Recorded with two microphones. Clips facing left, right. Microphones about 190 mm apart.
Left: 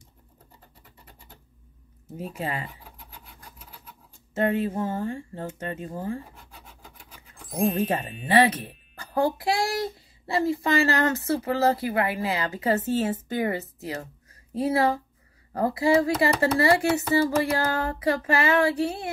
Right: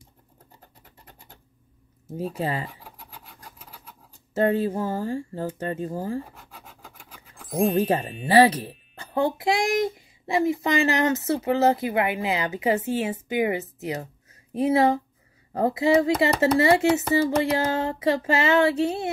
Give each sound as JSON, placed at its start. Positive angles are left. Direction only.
{"t": 2.1, "sound": "speech", "side_deg": -35}
{"t": 4.4, "sound": "speech", "side_deg": -35}
{"t": 7.3, "sound": "music", "side_deg": 0}
{"t": 8.3, "sound": "speech", "side_deg": -30}